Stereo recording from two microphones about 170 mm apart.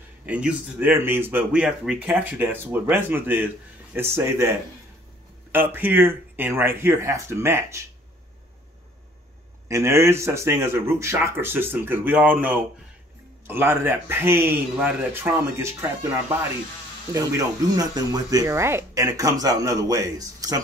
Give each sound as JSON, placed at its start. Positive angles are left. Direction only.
{"t": 0.3, "sound": "speech", "side_deg": -5}
{"t": 9.7, "sound": "speech", "side_deg": -15}